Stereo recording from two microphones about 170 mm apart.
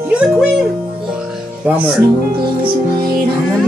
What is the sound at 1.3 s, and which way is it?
Music, 5° right (ahead or behind).